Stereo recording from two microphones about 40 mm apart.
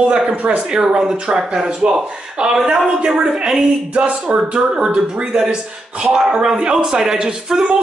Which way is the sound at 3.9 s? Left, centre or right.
Right.